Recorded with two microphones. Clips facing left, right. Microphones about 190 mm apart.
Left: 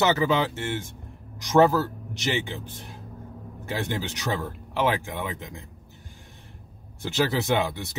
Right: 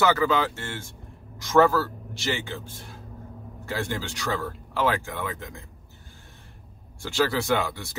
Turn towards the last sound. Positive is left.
turn(degrees=20)  # may be behind; listen again after turning